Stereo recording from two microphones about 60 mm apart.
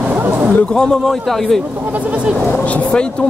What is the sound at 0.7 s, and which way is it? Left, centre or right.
Speech, centre.